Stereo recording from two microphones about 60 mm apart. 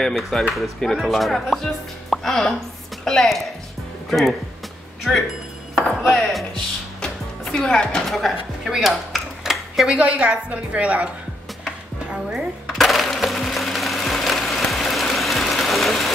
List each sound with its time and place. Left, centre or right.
0.0 s speech: centre
6.0 s chopping: centre
7.5 s speech: centre
8.7 s dishes: centre
9.8 s a woman's voice: centre
12.1 s music: centre
12.7 s music: centre